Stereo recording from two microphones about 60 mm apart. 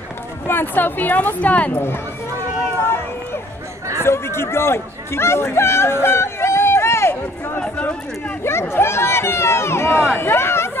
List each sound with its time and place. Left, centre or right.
0.5 s speech: left
1.8 s speech: left
4.0 s speech: left
7.6 s speech: left
8.5 s speech: left